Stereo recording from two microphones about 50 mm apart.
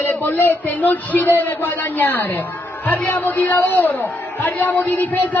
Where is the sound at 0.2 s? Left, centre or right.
Left.